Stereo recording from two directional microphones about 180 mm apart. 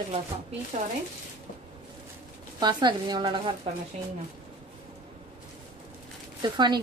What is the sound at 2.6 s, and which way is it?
Speech, 25° right (ahead or behind).